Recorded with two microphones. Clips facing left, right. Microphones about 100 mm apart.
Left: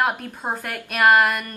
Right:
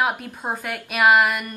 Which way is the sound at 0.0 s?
Centre (ahead or behind).